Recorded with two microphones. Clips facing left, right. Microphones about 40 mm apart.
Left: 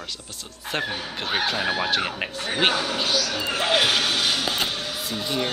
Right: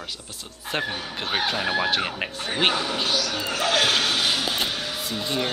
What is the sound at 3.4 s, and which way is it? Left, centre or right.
Speech, left.